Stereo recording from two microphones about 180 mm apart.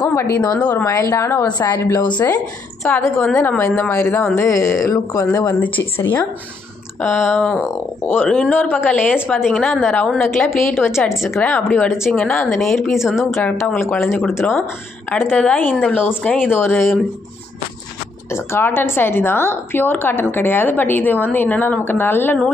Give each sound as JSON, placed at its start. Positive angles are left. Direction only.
{"t": 0.0, "sound": "a woman's voice", "side_deg": 15}
{"t": 2.0, "sound": "a woman's voice", "side_deg": 25}
{"t": 2.2, "sound": "a woman's voice", "side_deg": 10}
{"t": 13.9, "sound": "a woman's voice", "side_deg": 15}
{"t": 18.3, "sound": "a woman's voice", "side_deg": 15}